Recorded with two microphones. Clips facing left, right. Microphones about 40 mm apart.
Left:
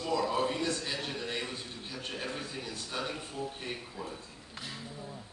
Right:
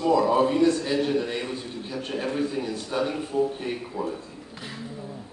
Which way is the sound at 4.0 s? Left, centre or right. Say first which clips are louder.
Right 11 dB; right.